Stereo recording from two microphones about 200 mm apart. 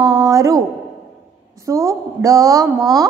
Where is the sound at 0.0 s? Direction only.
20° right (ahead or behind).